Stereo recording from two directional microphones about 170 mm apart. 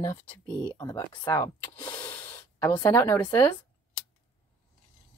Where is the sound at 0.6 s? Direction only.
25° left (ahead or behind).